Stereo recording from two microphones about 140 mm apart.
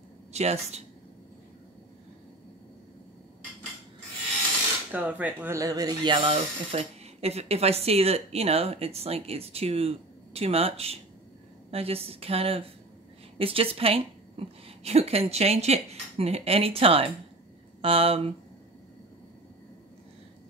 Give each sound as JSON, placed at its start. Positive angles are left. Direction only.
{"t": 0.3, "sound": "speech", "side_deg": -50}
{"t": 4.9, "sound": "a woman's voice", "side_deg": -10}